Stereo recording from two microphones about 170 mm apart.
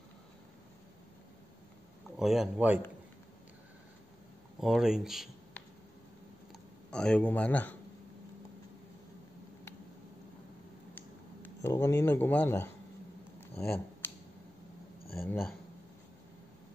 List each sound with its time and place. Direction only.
2.1 s speech: centre (ahead or behind)
4.6 s speech: centre (ahead or behind)
6.9 s speech: 5° left (ahead or behind)
11.0 s speech: 15° left (ahead or behind)
13.4 s a sound: 10° left (ahead or behind)